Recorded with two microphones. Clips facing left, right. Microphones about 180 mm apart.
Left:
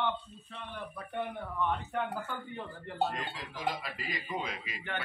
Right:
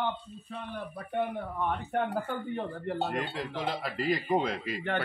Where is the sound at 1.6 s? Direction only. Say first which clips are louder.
Right 2 dB; 55° right (ahead or behind).